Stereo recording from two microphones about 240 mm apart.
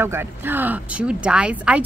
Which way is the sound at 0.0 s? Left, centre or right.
Centre.